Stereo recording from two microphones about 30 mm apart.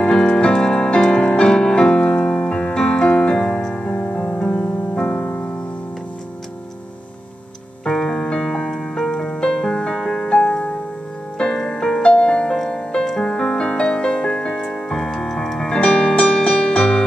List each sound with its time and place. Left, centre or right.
0.0 s music: left
5.2 s music: left
7.9 s keyboard: centre
9.4 s music: centre
10.3 s music: left
11.3 s music: left
15.7 s music: left